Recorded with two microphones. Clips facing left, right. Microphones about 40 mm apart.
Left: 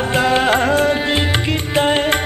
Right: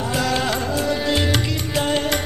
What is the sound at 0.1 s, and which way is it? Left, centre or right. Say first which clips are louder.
Music: left 7 dB; left.